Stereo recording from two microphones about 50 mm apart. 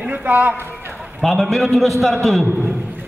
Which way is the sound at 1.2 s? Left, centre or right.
Centre.